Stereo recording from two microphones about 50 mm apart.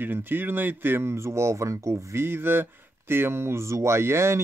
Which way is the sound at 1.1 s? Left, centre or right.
Right.